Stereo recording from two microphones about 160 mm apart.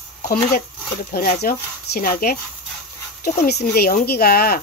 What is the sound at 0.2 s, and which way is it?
Speech, 65° left (ahead or behind).